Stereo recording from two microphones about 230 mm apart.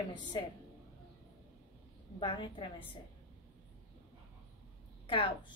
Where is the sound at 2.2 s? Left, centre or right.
Left.